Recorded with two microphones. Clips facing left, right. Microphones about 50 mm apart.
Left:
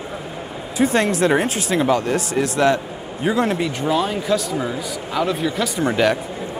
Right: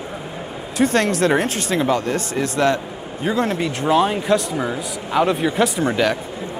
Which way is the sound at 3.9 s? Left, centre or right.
Centre.